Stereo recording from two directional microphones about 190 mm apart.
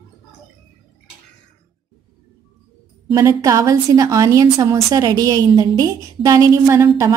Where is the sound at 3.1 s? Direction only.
20° right (ahead or behind).